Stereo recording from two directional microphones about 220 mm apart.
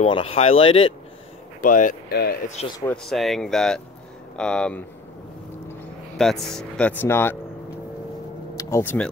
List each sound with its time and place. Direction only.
0.0 s speech: 25° left (ahead or behind)
1.6 s speech: 35° left (ahead or behind)
2.8 s speech: 5° left (ahead or behind)
8.5 s speech: 10° left (ahead or behind)